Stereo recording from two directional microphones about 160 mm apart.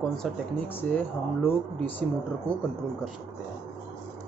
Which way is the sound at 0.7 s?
10° left (ahead or behind).